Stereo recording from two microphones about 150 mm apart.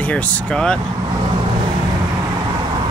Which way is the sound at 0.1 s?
5° left (ahead or behind).